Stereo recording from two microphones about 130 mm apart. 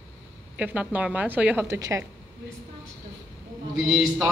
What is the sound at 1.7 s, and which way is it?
Speech, 25° right (ahead or behind).